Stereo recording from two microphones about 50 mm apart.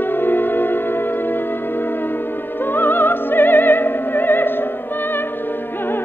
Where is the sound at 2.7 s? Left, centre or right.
Left.